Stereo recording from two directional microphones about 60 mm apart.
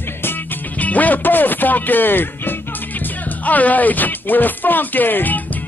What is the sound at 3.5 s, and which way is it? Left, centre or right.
Speech, left.